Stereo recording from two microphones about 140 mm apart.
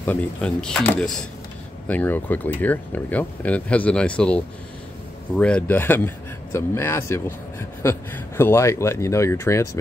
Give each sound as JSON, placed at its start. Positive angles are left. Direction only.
{"t": 0.0, "sound": "speech", "side_deg": 10}